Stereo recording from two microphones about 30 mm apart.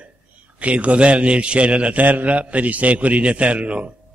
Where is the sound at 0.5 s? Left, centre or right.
Right.